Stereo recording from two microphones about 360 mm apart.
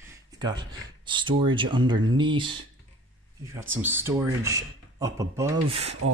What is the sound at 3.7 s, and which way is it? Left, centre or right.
Speech, centre.